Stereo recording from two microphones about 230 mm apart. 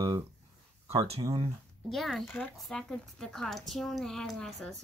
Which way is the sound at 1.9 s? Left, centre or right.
Centre.